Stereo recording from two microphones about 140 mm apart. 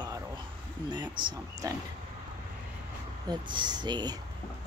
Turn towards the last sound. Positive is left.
turn(degrees=-30)  # may be behind; listen again after turning